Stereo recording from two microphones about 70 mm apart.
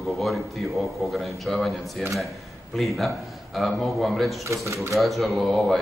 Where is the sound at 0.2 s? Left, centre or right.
Centre.